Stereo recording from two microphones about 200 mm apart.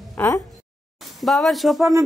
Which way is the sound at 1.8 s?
10° right (ahead or behind).